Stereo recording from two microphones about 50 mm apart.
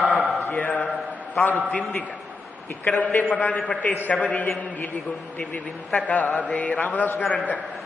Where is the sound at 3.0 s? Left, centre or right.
Left.